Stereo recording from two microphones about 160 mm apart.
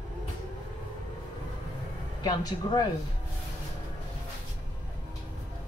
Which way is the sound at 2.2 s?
25° left (ahead or behind).